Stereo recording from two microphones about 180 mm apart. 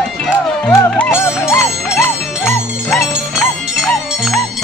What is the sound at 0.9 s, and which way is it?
Music, 10° left (ahead or behind).